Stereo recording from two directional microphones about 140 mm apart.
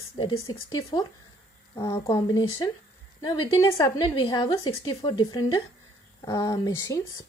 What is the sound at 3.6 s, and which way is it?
Speech, 20° left (ahead or behind).